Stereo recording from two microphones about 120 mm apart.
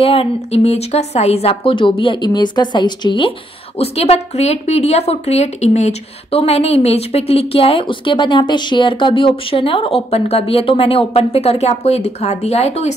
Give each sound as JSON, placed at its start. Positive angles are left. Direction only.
{"t": 0.0, "sound": "a woman's voice", "side_deg": 55}